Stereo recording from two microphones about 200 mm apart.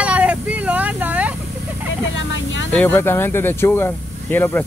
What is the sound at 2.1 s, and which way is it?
Speech, 65° left (ahead or behind).